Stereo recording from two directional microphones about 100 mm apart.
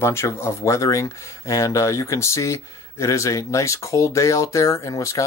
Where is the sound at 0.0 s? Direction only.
25° left (ahead or behind).